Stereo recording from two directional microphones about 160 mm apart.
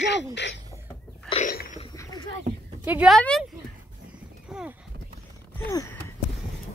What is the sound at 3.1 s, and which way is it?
Speech, 5° left (ahead or behind).